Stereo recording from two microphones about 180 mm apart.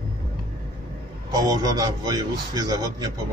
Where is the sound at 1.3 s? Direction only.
20° right (ahead or behind).